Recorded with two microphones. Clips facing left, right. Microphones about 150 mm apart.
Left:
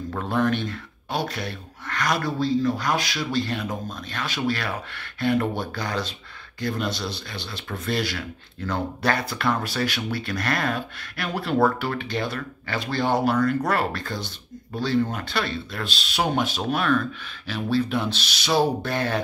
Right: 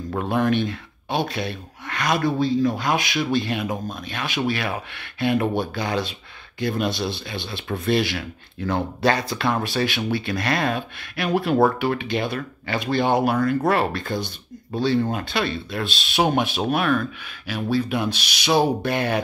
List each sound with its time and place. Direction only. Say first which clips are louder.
0.1 s speech: right 3 dB; 20° right (ahead or behind)